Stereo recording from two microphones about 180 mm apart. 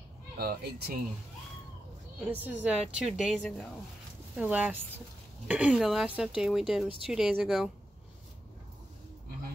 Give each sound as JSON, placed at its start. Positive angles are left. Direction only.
{"t": 0.4, "sound": "speech", "side_deg": -60}
{"t": 2.3, "sound": "speech", "side_deg": -10}
{"t": 4.4, "sound": "speech", "side_deg": -10}